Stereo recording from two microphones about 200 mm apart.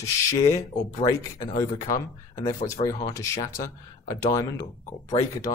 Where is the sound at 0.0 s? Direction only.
15° left (ahead or behind).